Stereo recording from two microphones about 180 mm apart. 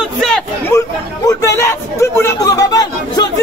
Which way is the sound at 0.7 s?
15° left (ahead or behind).